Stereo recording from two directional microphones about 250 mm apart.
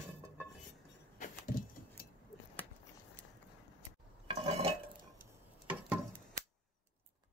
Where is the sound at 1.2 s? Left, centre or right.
Left.